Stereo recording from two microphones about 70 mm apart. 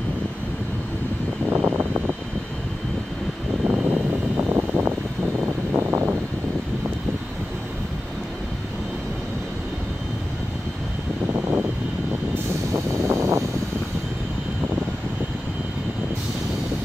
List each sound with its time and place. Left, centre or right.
1.5 s vehicle: right
3.6 s vehicle: right
5.8 s a sound: right
13.1 s vehicle: right